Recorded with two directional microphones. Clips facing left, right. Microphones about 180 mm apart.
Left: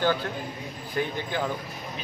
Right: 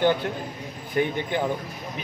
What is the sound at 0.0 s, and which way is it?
A man's voice, 20° right (ahead or behind).